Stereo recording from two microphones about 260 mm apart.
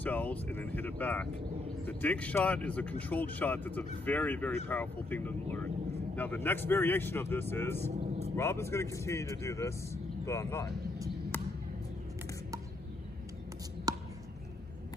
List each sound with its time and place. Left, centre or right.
0.0 s speech: centre
7.9 s vehicle: right
8.4 s speech: centre
13.9 s chop: centre